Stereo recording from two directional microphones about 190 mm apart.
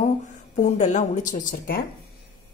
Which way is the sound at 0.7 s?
40° left (ahead or behind).